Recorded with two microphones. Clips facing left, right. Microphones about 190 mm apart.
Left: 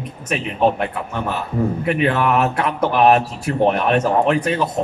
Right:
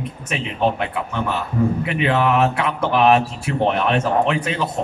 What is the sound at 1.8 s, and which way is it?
Speech, 45° left (ahead or behind).